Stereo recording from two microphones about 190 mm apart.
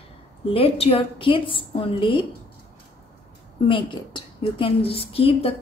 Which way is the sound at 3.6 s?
25° left (ahead or behind).